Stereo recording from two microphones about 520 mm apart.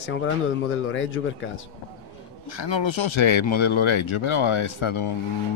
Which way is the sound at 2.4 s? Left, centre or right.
Left.